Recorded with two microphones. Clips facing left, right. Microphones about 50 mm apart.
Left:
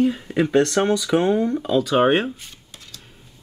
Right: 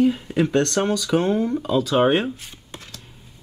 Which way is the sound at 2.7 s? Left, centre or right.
Right.